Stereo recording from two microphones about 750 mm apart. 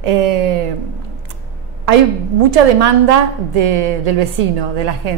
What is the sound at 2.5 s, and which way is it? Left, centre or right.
Speech, right.